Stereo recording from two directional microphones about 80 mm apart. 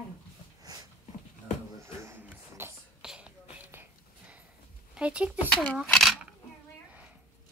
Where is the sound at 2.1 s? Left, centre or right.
Right.